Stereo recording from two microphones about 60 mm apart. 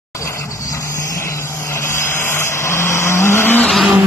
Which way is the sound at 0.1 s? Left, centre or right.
Left.